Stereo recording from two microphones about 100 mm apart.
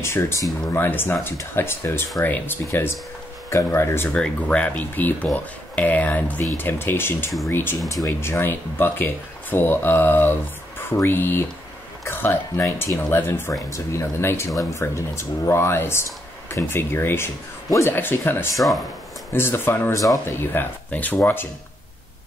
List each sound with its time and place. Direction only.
0.0 s speech: 25° left (ahead or behind)
4.1 s speech: 10° left (ahead or behind)